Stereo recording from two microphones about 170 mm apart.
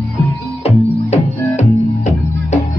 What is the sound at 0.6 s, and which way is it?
Music, 40° left (ahead or behind).